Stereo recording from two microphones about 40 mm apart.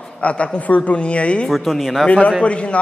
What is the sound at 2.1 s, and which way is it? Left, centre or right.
Speech, left.